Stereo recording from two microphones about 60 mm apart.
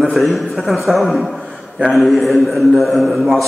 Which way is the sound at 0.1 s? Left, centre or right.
Centre.